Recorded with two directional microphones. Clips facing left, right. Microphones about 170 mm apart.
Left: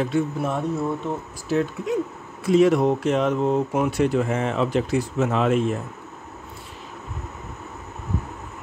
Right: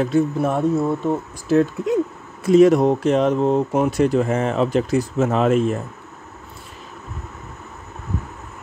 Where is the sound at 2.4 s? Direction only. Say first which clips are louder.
Right 4 dB; 45° right (ahead or behind).